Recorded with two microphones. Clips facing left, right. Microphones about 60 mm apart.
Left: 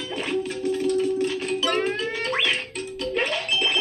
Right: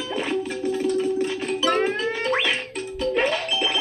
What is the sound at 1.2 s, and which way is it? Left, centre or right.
Music, right.